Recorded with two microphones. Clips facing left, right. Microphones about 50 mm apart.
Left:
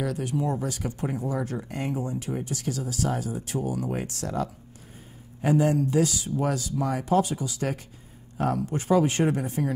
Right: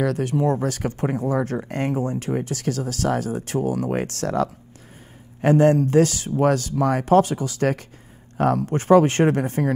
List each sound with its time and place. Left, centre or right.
0.0 s speech: right